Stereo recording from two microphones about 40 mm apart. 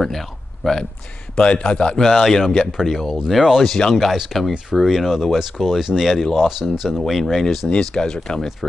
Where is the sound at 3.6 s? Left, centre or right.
Centre.